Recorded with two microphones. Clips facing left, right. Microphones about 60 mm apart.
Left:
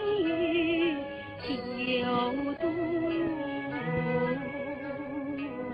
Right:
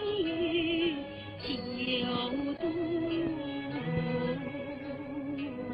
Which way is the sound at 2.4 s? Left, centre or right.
Left.